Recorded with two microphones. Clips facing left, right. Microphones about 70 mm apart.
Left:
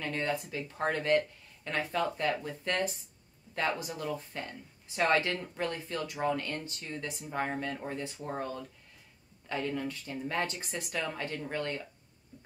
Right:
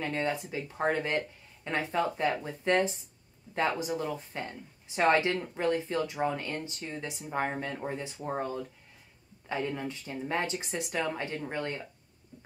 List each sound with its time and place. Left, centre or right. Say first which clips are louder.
0.0 s speech: right 2 dB; centre